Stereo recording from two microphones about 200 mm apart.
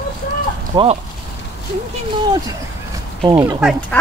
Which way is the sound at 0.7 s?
20° right (ahead or behind).